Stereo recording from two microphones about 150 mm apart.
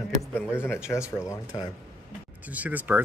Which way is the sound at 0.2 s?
15° left (ahead or behind).